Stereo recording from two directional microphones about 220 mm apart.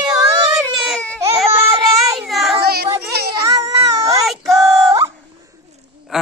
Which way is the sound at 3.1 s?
45° right (ahead or behind).